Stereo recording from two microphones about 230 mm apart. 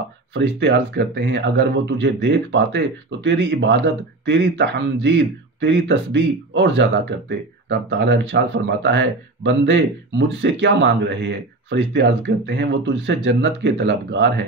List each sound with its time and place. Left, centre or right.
0.3 s speech: right